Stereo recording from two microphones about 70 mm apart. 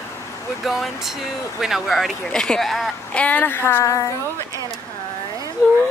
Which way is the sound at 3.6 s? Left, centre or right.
Left.